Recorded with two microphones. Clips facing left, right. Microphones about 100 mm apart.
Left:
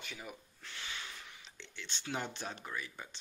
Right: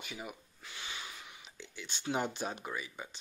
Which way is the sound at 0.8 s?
15° right (ahead or behind).